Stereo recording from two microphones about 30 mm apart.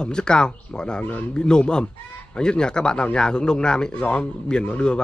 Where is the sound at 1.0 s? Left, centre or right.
Left.